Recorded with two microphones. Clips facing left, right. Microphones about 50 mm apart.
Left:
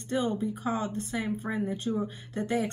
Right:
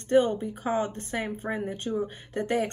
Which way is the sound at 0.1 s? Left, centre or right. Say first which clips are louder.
Right 6 dB; right.